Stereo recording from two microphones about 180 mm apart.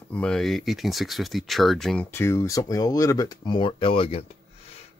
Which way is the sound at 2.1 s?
15° left (ahead or behind).